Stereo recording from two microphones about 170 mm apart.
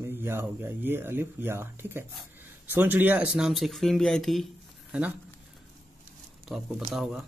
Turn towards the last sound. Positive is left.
turn(degrees=0)  # may be behind; listen again after turning